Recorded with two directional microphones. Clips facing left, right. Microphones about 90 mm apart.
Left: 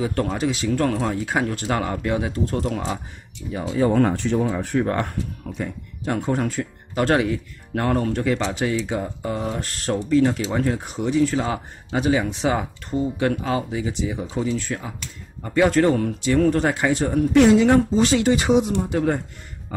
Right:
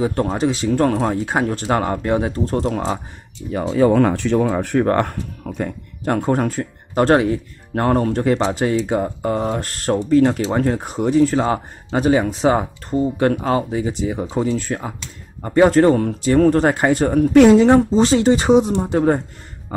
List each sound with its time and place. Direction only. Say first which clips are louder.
0.0 s speech: right 4 dB; 30° right (ahead or behind)
3.7 s speech: right 4 dB; 90° right; by 17.6 s 50° right (ahead or behind)
17.6 s speech: right 4 dB; 30° right (ahead or behind)